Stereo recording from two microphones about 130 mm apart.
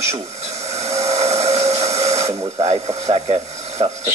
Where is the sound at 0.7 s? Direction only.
55° right (ahead or behind).